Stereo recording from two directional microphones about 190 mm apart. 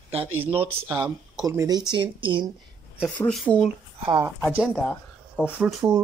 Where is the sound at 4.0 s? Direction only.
30° right (ahead or behind).